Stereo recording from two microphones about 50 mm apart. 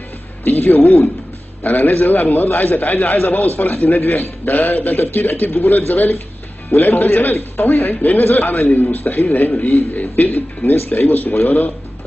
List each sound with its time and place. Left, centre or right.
0.4 s a man's voice: left